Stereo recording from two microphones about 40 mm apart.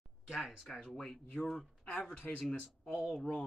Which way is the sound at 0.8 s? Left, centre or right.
Centre.